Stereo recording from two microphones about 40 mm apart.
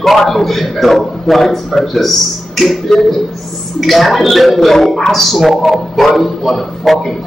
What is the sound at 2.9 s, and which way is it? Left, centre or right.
Speech, centre.